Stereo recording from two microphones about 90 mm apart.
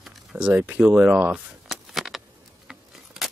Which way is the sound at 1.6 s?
Centre (ahead or behind).